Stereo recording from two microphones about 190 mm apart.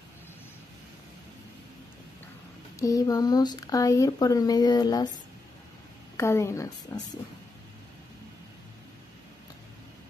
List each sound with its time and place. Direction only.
2.8 s speech: 20° left (ahead or behind)
6.1 s a woman's voice: 15° left (ahead or behind)